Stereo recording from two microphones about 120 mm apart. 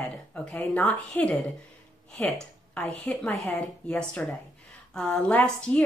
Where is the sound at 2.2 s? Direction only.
5° left (ahead or behind).